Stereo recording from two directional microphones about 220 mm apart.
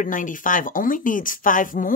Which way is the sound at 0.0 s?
35° left (ahead or behind).